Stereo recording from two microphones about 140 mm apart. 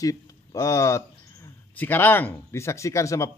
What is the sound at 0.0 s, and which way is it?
Speech, 25° left (ahead or behind).